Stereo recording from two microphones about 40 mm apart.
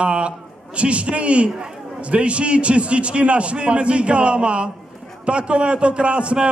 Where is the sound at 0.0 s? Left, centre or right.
Right.